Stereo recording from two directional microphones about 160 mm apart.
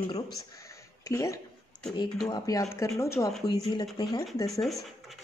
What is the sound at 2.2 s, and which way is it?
Speech, 20° left (ahead or behind).